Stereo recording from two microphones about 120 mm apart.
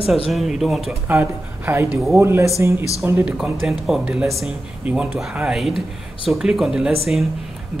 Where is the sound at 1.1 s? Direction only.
20° right (ahead or behind).